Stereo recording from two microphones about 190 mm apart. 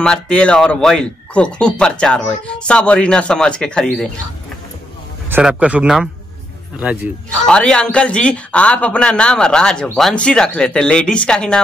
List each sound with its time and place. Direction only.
0.0 s a man's voice: 5° left (ahead or behind)
5.3 s a man's voice: 5° right (ahead or behind)
7.4 s a man's voice: 5° left (ahead or behind)